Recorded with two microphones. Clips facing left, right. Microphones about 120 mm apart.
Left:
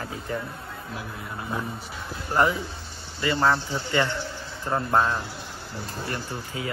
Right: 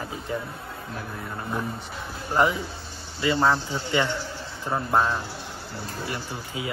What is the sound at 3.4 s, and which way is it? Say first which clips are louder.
A man's voice: left 2 dB; 5° right (ahead or behind).